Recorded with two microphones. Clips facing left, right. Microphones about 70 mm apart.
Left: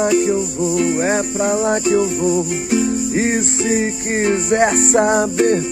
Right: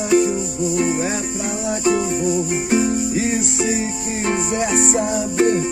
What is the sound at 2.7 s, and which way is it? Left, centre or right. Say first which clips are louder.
Music: left 1 dB; right.